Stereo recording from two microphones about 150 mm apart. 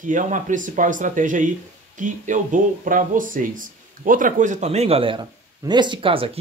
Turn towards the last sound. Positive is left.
turn(degrees=-35)  # may be behind; listen again after turning